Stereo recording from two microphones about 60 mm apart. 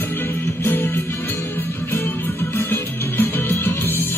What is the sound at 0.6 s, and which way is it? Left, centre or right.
Music, left.